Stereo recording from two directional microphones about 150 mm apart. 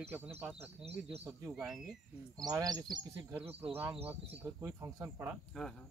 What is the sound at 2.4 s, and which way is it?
Speech, 25° right (ahead or behind).